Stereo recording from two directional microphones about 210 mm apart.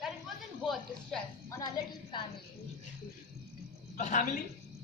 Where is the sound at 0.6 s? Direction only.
Centre (ahead or behind).